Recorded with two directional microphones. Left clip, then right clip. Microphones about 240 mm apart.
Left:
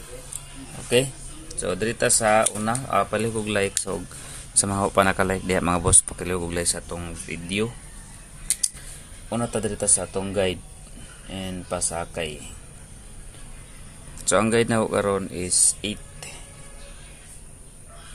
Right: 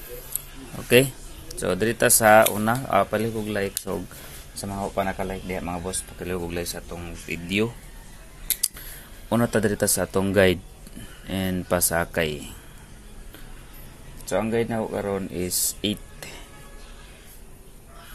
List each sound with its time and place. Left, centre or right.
0.8 s speech: centre
4.7 s speech: centre
6.1 s speech: centre
7.2 s speech: centre
9.3 s speech: centre
14.3 s speech: centre
15.3 s speech: centre